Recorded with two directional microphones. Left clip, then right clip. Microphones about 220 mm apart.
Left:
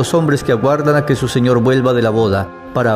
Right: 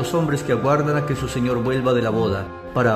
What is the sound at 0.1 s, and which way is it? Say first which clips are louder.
A man's voice: left 6 dB; 25° left (ahead or behind).